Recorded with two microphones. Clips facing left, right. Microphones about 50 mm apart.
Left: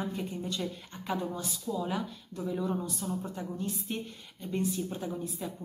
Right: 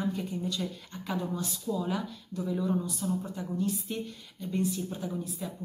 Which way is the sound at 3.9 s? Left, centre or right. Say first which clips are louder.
Right 1 dB; left.